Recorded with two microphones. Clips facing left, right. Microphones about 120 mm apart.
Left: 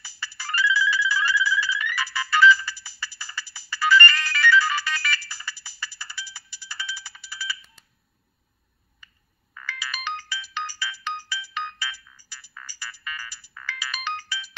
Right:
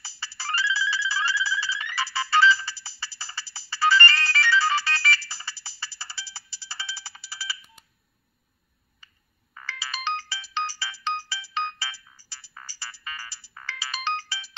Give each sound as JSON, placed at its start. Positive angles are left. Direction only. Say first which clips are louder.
{"t": 0.0, "sound": "ringtone", "louder": "right 1 dB", "side_deg": -30}
{"t": 7.2, "sound": "telephone", "louder": "left 3 dB", "side_deg": -30}
{"t": 9.0, "sound": "ringtone", "louder": "left 2 dB", "side_deg": -30}